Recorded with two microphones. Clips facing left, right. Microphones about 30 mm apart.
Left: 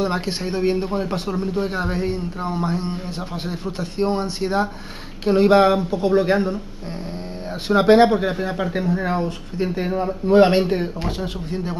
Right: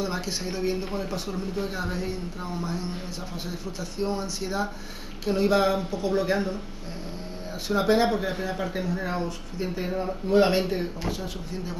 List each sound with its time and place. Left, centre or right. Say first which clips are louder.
0.0 s speech: left 7 dB; left
7.6 s speech: left 9 dB; left